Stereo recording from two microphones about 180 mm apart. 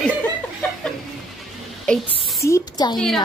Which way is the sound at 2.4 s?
20° left (ahead or behind).